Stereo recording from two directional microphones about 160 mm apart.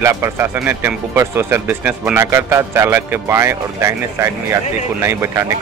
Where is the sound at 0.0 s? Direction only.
15° right (ahead or behind).